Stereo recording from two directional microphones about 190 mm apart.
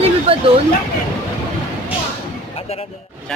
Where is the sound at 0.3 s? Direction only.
30° right (ahead or behind).